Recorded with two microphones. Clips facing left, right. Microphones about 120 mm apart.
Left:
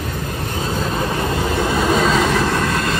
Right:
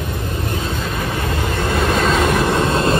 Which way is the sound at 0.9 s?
25° left (ahead or behind).